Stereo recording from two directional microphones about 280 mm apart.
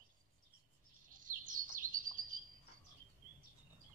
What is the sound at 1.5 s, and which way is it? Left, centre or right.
Bird, right.